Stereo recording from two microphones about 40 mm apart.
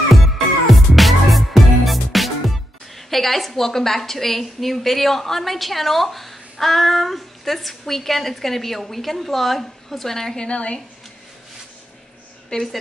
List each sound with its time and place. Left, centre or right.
0.1 s music: centre
3.1 s a woman's voice: centre
10.4 s speech: left
12.5 s speech: left